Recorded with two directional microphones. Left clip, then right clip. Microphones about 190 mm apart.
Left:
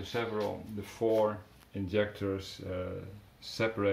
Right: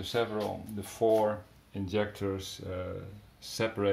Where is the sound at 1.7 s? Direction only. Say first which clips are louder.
Left 1 dB; 20° right (ahead or behind).